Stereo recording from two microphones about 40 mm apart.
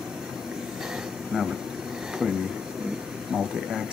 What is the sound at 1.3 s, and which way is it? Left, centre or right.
Speech, centre.